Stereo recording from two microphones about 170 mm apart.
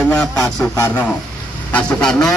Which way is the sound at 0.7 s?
15° left (ahead or behind).